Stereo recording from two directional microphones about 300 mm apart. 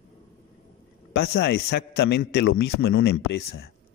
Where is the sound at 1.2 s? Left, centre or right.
Left.